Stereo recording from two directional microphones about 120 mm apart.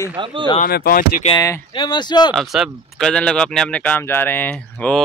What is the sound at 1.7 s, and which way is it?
Speech, 40° left (ahead or behind).